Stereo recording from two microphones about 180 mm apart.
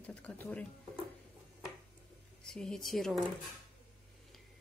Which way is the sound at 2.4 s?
5° left (ahead or behind).